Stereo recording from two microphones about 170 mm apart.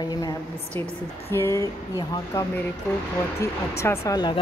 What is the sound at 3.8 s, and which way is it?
Speech, 15° left (ahead or behind).